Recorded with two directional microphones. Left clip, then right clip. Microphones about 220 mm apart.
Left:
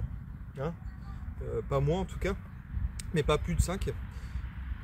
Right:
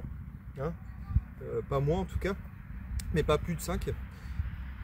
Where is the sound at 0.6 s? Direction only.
Centre (ahead or behind).